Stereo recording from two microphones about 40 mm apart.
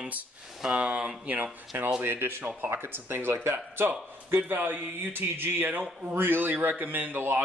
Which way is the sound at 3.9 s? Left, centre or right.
Right.